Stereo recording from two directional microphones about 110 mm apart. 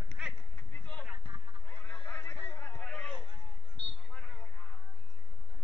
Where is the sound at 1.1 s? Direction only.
55° right (ahead or behind).